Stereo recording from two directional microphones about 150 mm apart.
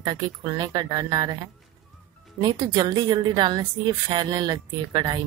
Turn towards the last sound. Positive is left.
turn(degrees=-30)  # may be behind; listen again after turning